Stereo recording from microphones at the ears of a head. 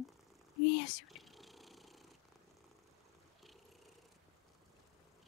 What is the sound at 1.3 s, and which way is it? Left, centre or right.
Purr, centre.